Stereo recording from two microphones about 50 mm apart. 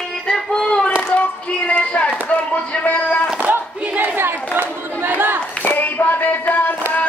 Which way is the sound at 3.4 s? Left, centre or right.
Right.